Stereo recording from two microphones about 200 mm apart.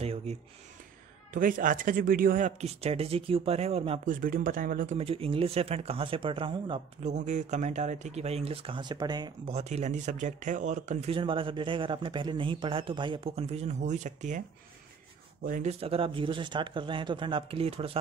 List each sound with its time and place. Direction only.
0.0 s a sound: 30° right (ahead or behind)
1.3 s speech: 40° right (ahead or behind)
4.1 s speech: 45° right (ahead or behind); by 9.3 s 20° right (ahead or behind)
9.5 s speech: 30° right (ahead or behind)
15.4 s speech: 40° right (ahead or behind)
15.8 s speech: 30° right (ahead or behind)